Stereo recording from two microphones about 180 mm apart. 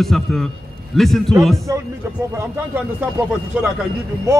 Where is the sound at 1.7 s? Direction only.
20° right (ahead or behind).